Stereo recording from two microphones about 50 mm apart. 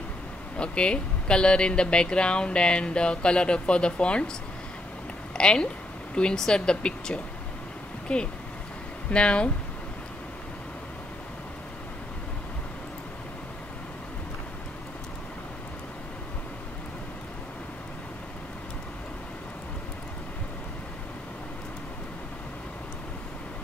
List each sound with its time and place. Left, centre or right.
0.6 s speech: left
5.4 s speech: centre